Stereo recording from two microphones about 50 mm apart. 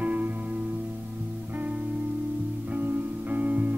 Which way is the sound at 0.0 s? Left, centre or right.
Right.